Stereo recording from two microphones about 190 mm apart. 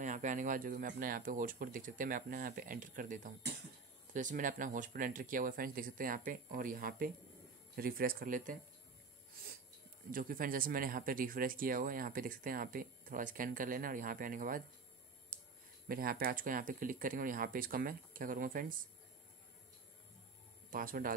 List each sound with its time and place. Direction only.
0.0 s speech: 40° right (ahead or behind)
10.1 s speech: 45° right (ahead or behind)
15.9 s speech: 50° right (ahead or behind)
20.7 s speech: 45° right (ahead or behind)